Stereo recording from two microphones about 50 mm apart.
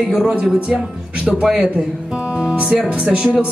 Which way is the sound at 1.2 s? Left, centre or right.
Centre.